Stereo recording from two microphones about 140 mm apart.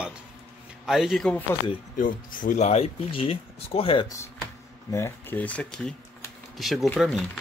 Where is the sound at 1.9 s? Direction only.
70° left (ahead or behind); by 4.1 s 40° left (ahead or behind).